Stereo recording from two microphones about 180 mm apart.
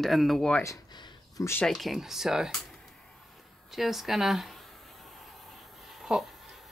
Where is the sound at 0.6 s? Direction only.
20° left (ahead or behind).